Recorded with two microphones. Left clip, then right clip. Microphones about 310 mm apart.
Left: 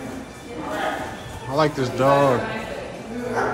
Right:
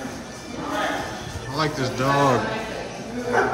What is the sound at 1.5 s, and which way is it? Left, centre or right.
Speech, centre.